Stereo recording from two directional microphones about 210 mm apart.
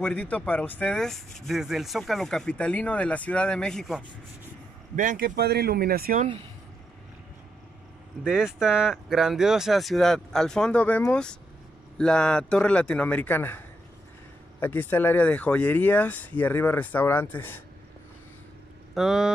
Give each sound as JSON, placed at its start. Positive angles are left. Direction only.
{"t": 0.0, "sound": "speech", "side_deg": 5}
{"t": 4.9, "sound": "a man's voice", "side_deg": -40}
{"t": 8.2, "sound": "speech", "side_deg": -5}
{"t": 18.9, "sound": "speech", "side_deg": 0}